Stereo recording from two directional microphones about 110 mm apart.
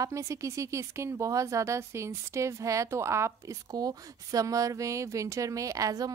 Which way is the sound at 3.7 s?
35° right (ahead or behind).